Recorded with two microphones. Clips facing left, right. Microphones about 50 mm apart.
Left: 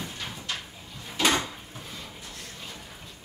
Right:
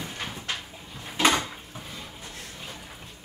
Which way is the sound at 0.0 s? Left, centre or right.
Centre.